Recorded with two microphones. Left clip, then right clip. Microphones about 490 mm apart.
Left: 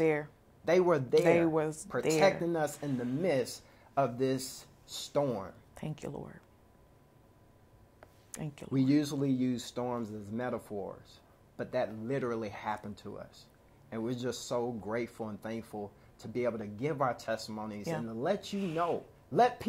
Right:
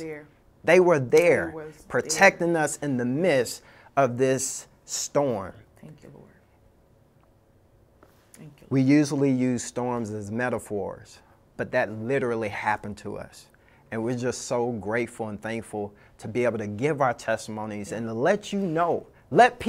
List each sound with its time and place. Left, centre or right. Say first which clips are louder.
0.0 s speech: left 8 dB; left
0.7 s speech: right 9 dB; right
4.8 s speech: right 9 dB; right
5.1 s speech: right 7 dB; right
5.8 s speech: left 7 dB; left
8.3 s speech: left 7 dB; left
8.7 s speech: right 9 dB; right